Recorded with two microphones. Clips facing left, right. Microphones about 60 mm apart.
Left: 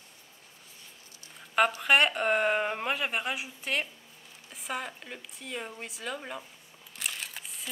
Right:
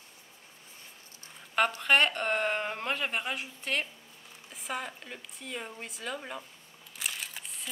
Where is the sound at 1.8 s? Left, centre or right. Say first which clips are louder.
Left 1 dB; centre.